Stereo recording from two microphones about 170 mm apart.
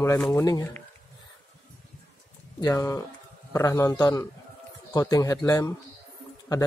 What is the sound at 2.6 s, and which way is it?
A man's voice, 20° left (ahead or behind).